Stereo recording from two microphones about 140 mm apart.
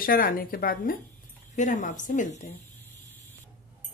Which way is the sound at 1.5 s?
60° left (ahead or behind).